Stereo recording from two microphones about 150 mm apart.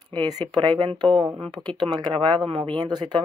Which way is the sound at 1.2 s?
10° right (ahead or behind).